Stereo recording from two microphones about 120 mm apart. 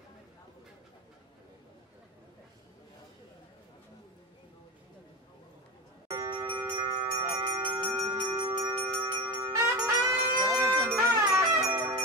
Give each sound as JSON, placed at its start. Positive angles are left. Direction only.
{"t": 6.0, "sound": "a sound", "side_deg": -35}
{"t": 7.5, "sound": "bell", "side_deg": -40}
{"t": 8.7, "sound": "music", "side_deg": -20}